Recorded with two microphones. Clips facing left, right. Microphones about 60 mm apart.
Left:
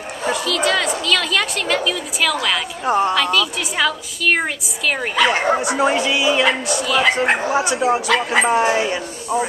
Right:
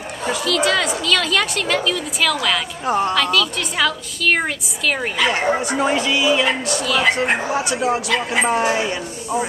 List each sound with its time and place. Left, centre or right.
0.2 s a woman's voice: centre
8.1 s speech: left
8.5 s a woman's voice: centre